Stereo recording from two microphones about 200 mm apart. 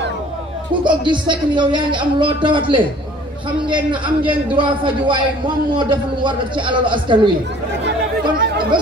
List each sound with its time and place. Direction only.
0.8 s speech: 25° right (ahead or behind)
7.8 s chatter: 50° right (ahead or behind)